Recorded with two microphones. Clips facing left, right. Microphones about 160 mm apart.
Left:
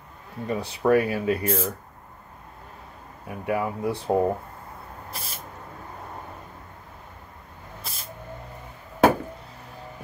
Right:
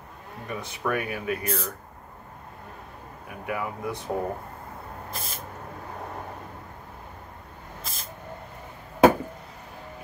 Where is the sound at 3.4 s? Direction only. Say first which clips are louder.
Left 5 dB; 30° left (ahead or behind).